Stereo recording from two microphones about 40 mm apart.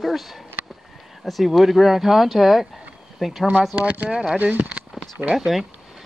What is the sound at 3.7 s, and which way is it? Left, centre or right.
Speech, right.